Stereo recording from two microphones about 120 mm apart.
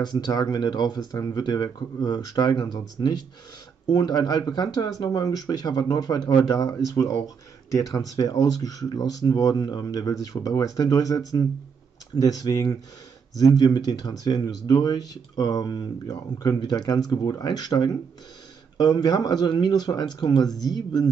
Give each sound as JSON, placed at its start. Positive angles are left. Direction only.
{"t": 0.0, "sound": "speech", "side_deg": 35}